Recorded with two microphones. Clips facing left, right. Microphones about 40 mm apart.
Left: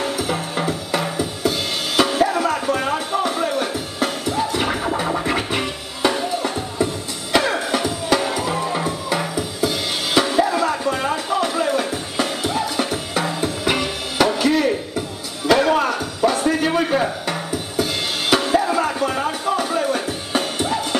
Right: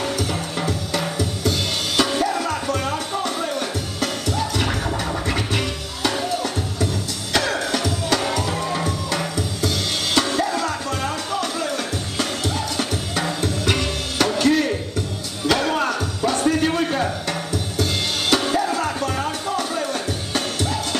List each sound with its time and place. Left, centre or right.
0.0 s music: centre